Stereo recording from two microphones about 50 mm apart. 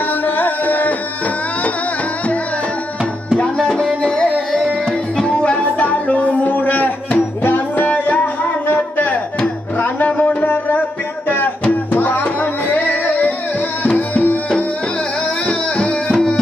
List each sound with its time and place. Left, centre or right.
0.2 s music: left
4.1 s music: centre; by 14.4 s left
15.4 s music: left
16.1 s music: centre